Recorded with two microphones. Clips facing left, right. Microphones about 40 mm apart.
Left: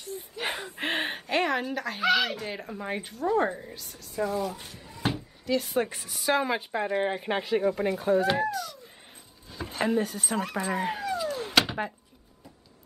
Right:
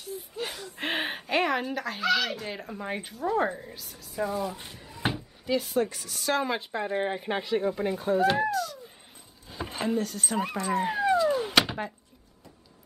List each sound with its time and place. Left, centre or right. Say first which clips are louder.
0.4 s speech: left 4 dB; left
0.7 s speech: right 2 dB; centre
2.0 s speech: left 2 dB; centre
4.7 s cupboard open or close: even; centre
5.1 s a sound: even; centre
5.8 s a woman's voice: right 1 dB; left
6.1 s speech: left 2 dB; centre
9.5 s a sound: right 2 dB; centre
10.1 s speech: even; centre
11.2 s door: right 2 dB; centre
11.6 s a sound: left 1 dB; centre